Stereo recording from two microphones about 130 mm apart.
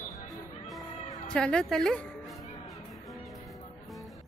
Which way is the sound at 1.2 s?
5° left (ahead or behind).